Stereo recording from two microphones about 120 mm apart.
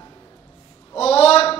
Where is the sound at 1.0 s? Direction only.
60° left (ahead or behind).